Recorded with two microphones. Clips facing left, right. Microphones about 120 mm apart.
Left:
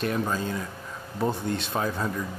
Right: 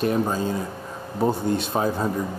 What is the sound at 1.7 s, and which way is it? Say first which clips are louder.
Speech: right 3 dB; 25° right (ahead or behind).